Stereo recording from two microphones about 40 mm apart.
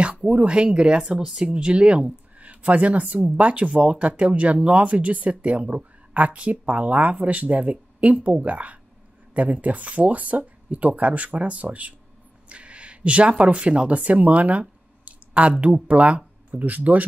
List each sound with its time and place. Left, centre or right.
0.3 s speech: right
1.2 s speech: centre
1.5 s speech: right